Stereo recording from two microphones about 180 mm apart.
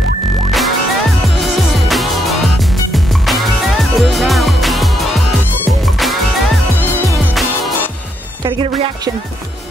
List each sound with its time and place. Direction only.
0.5 s music: centre (ahead or behind)
8.4 s speech: 30° right (ahead or behind)